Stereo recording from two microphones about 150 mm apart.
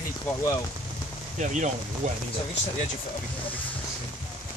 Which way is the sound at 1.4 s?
55° right (ahead or behind).